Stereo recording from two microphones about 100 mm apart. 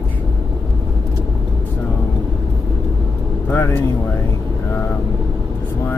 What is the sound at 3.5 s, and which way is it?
Speech, 20° left (ahead or behind).